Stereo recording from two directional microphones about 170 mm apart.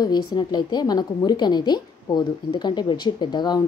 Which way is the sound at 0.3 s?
25° left (ahead or behind).